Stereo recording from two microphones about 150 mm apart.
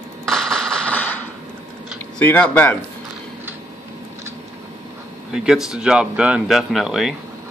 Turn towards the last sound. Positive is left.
turn(degrees=0)  # may be behind; listen again after turning